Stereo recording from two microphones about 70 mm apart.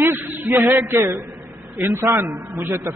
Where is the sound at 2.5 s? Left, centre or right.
Right.